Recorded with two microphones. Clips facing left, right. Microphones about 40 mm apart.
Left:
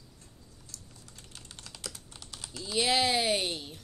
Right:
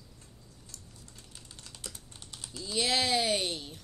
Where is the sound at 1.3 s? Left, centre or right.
Left.